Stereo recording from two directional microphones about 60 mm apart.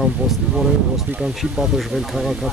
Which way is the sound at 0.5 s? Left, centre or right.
Centre.